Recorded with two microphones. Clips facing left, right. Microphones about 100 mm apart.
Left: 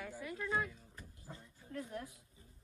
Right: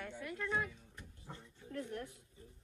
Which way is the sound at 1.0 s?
70° right (ahead or behind).